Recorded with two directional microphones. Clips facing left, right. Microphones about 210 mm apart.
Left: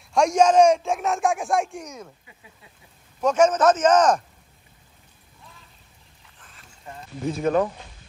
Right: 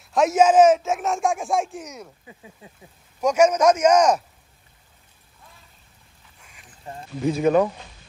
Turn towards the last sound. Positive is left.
turn(degrees=-5)  # may be behind; listen again after turning